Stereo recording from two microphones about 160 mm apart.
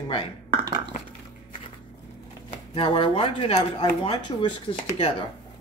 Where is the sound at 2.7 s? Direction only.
30° left (ahead or behind).